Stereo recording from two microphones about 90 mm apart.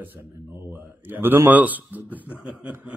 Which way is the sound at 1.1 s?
25° right (ahead or behind).